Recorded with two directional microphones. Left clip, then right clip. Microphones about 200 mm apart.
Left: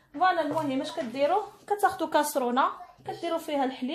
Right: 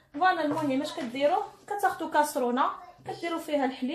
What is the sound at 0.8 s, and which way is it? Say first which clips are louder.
Speech: even; 40° left (ahead or behind).